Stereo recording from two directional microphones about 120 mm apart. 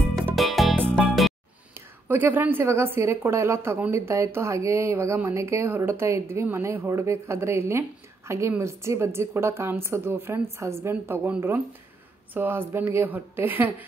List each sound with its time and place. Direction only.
0.1 s music: centre (ahead or behind)
0.7 s music: 15° right (ahead or behind)
1.0 s music: centre (ahead or behind)
2.0 s a woman's voice: 15° right (ahead or behind)